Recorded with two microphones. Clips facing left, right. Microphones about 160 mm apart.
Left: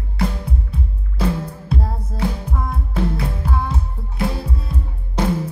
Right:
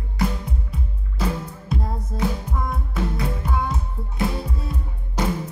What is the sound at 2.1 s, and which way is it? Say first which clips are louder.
Music: left 1 dB; 30° left (ahead or behind).